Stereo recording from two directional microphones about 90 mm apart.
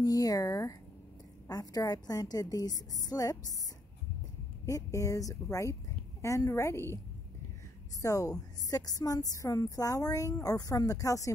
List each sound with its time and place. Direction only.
0.0 s a sound: 45° left (ahead or behind)
1.5 s a woman's voice: 40° left (ahead or behind)
4.6 s a woman's voice: 35° left (ahead or behind)
8.0 s a woman's voice: 40° left (ahead or behind)